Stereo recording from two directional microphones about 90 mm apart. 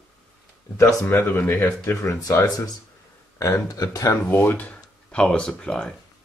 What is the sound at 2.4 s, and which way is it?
Speech, 45° left (ahead or behind).